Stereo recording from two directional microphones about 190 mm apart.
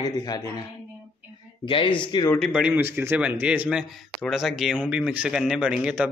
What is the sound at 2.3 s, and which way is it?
Speech, centre (ahead or behind).